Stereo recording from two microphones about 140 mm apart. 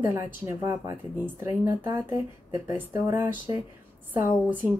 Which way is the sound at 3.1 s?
15° right (ahead or behind).